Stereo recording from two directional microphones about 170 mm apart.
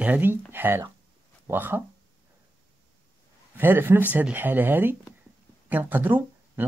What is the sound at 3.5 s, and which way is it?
Speech, 10° right (ahead or behind).